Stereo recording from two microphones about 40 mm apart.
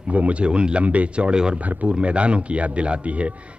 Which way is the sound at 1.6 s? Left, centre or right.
Right.